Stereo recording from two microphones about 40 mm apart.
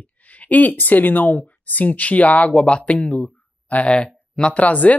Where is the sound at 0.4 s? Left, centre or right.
Left.